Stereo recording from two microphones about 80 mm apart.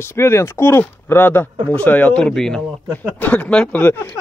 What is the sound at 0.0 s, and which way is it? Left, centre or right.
Speech, left.